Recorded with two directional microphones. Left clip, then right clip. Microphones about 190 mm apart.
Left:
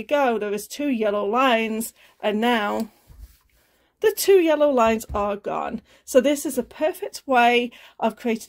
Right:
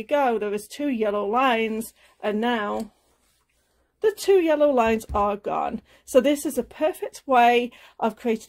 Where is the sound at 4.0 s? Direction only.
20° left (ahead or behind).